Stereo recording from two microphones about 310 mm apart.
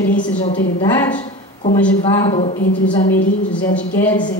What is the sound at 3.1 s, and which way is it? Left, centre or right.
A woman's voice, centre.